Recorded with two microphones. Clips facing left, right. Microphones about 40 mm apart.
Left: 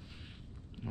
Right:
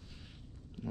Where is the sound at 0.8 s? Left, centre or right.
Centre.